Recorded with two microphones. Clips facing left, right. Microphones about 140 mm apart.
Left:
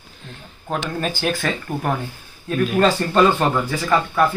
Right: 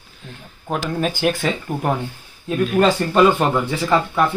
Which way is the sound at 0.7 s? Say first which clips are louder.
Right 2 dB; 10° right (ahead or behind).